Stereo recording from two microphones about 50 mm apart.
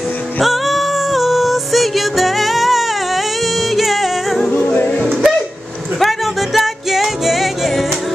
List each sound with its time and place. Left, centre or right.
0.4 s female singing: centre
3.7 s music: centre
4.5 s music: left
4.9 s music: centre